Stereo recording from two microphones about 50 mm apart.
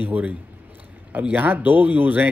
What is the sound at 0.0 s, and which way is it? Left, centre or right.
A man's voice, right.